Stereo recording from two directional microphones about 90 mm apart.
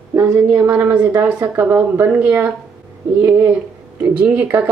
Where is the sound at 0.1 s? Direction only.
35° right (ahead or behind).